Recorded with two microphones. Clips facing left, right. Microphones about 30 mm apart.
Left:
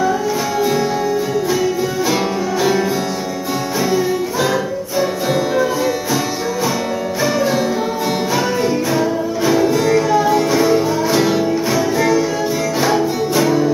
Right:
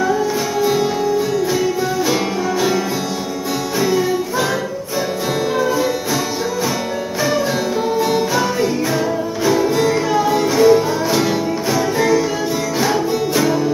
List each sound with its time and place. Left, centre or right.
9.7 s music: centre